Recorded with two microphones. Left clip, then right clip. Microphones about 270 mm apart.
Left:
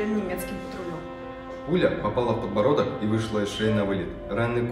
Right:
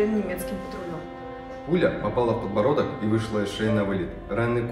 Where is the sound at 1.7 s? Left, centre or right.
Centre.